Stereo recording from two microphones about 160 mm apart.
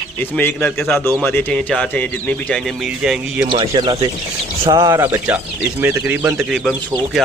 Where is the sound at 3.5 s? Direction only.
35° right (ahead or behind).